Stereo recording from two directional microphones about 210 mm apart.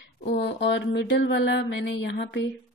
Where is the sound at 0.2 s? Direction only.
45° left (ahead or behind).